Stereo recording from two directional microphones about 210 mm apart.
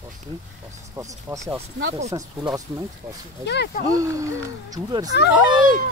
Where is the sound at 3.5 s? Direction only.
50° left (ahead or behind).